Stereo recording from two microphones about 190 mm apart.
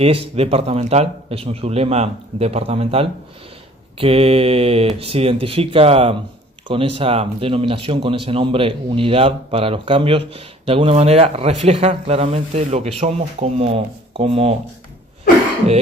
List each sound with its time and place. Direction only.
0.0 s speech: 30° right (ahead or behind)